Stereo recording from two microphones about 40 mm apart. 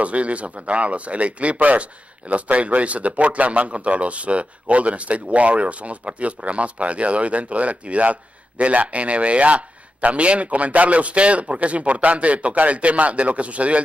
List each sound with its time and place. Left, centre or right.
0.0 s speech: right